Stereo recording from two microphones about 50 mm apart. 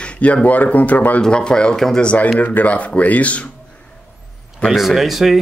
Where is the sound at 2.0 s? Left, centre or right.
Left.